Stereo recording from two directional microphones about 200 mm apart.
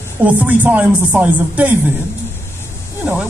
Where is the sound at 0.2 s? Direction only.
10° right (ahead or behind).